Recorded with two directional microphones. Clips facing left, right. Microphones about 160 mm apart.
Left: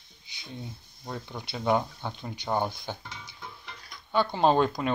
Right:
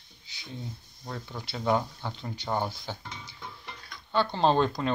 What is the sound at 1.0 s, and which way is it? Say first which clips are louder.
Speech: left 1 dB; 15° left (ahead or behind).